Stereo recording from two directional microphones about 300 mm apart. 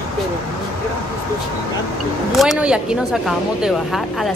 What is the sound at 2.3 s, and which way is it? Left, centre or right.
Speech, centre.